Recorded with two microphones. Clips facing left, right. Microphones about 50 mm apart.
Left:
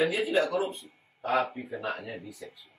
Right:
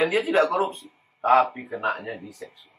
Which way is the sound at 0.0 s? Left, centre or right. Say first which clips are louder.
Right 5 dB; right.